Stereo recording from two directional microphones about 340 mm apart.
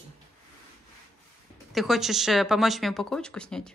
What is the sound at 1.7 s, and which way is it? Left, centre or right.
Speech, centre.